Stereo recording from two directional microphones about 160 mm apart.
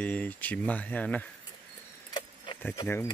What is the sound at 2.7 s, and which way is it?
Speech, 15° left (ahead or behind).